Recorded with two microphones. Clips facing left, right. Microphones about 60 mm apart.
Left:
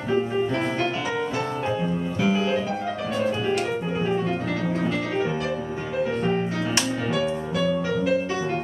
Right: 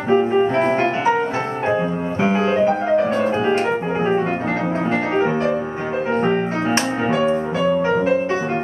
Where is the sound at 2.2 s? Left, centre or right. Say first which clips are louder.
Right 7 dB; right.